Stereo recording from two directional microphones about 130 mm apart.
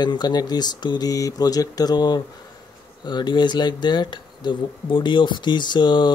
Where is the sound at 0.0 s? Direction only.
30° left (ahead or behind).